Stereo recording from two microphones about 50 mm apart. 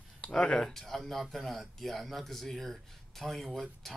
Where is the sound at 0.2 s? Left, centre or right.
Centre.